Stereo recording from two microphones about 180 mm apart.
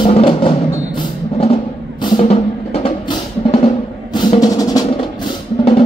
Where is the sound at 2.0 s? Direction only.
30° left (ahead or behind).